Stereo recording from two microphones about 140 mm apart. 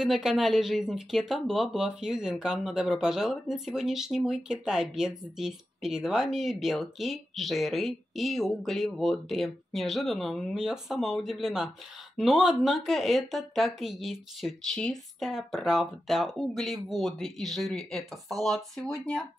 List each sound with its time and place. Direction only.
0.0 s speech: 5° right (ahead or behind)